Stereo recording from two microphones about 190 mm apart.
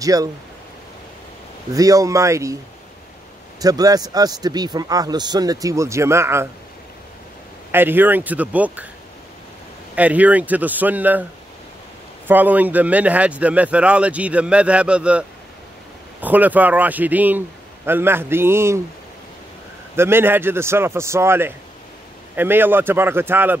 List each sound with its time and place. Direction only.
0.0 s speech: 20° right (ahead or behind)
1.7 s speech: 20° right (ahead or behind)
3.6 s speech: 20° right (ahead or behind)
7.7 s speech: 10° right (ahead or behind)
9.9 s speech: 10° right (ahead or behind)
12.3 s speech: 10° right (ahead or behind)
20.0 s speech: 10° right (ahead or behind)